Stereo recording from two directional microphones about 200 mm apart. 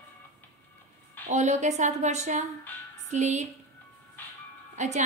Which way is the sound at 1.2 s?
35° right (ahead or behind).